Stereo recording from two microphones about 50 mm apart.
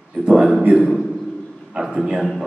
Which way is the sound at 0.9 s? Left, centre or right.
Centre.